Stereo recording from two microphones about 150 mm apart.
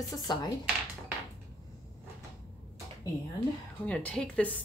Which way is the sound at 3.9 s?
5° left (ahead or behind).